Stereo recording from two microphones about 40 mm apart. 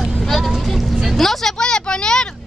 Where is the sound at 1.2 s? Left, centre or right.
Centre.